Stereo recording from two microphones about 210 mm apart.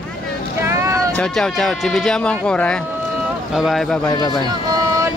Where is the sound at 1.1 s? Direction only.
5° left (ahead or behind).